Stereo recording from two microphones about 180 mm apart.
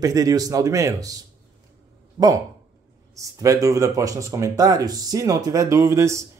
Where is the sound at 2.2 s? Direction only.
25° right (ahead or behind).